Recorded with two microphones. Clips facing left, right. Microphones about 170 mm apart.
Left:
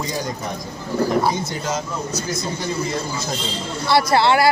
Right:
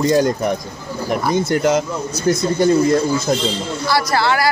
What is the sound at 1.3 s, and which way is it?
Speech, 65° right (ahead or behind).